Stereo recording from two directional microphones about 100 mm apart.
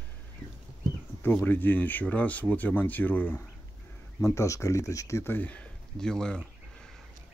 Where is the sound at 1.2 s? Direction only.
20° left (ahead or behind).